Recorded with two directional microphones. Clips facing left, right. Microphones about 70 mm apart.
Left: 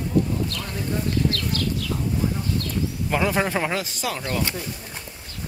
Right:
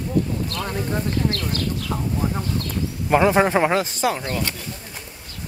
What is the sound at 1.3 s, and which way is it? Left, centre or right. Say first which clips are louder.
Speech: right 1 dB; right.